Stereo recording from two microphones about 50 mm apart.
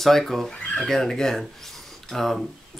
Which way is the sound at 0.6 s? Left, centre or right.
Left.